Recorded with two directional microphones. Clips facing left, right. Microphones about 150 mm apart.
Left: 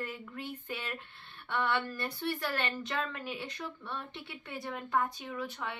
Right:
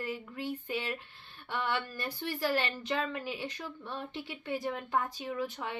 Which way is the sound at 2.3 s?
30° right (ahead or behind).